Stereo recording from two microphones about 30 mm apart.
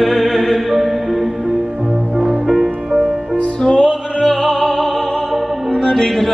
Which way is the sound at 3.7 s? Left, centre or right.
Left.